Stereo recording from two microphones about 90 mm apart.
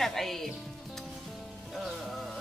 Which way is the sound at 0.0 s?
5° left (ahead or behind).